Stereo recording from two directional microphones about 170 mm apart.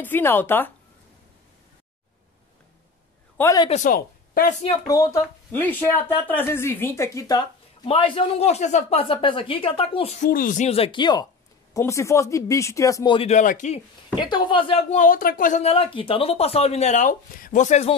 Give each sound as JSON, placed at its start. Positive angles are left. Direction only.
{"t": 0.0, "sound": "speech", "side_deg": 10}
{"t": 3.3, "sound": "a man's voice", "side_deg": 20}
{"t": 3.8, "sound": "a woman's voice", "side_deg": 60}
{"t": 4.8, "sound": "speech", "side_deg": 20}
{"t": 7.8, "sound": "speech", "side_deg": 35}
{"t": 10.7, "sound": "speech", "side_deg": 30}
{"t": 13.3, "sound": "speech", "side_deg": 45}
{"t": 14.3, "sound": "speech", "side_deg": 30}
{"t": 15.0, "sound": "speech", "side_deg": 55}
{"t": 15.6, "sound": "speech", "side_deg": 35}